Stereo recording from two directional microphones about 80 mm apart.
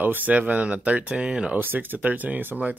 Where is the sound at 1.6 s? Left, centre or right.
Right.